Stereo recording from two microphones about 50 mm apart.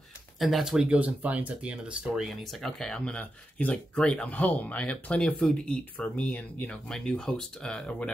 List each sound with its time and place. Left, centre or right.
0.4 s speech: centre
0.7 s speech: right
2.4 s speech: centre
2.9 s speech: left
4.0 s speech: centre
4.3 s speech: left; by 5.8 s centre
5.9 s speech: left
6.9 s speech: centre